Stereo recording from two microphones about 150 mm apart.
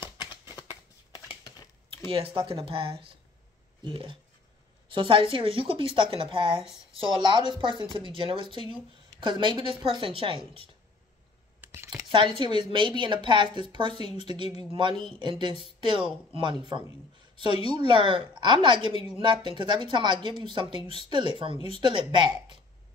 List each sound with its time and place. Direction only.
2.0 s a woman's voice: 35° right (ahead or behind)
11.6 s a sound: 15° right (ahead or behind)
12.1 s a woman's voice: 30° right (ahead or behind)
14.1 s a woman's voice: 40° left (ahead or behind)
14.5 s a woman's voice: 30° right (ahead or behind)
16.0 s speech: 5° right (ahead or behind)
17.5 s a woman's voice: 40° left (ahead or behind)
17.7 s a woman's voice: 30° right (ahead or behind)